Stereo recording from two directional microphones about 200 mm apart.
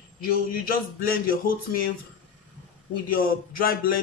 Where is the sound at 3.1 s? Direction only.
45° left (ahead or behind).